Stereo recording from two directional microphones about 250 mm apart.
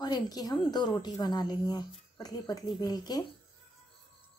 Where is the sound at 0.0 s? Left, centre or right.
Centre.